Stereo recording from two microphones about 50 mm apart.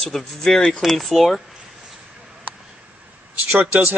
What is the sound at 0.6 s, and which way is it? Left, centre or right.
Speech, centre.